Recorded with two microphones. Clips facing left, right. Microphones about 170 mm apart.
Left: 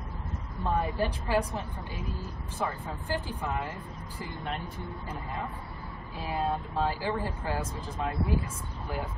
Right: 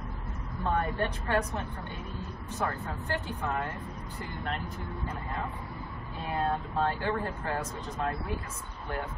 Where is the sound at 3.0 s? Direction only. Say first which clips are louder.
Left 2 dB; 30° left (ahead or behind).